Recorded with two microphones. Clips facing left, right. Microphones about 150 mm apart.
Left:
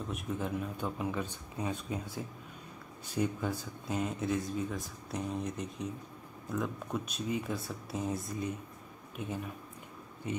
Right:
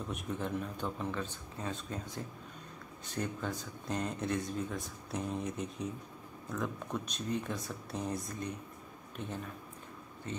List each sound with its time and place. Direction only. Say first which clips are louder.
0.1 s a man's voice: left 1 dB; 5° left (ahead or behind)